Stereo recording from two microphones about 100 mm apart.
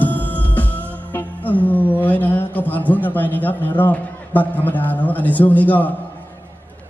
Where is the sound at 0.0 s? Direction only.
15° left (ahead or behind).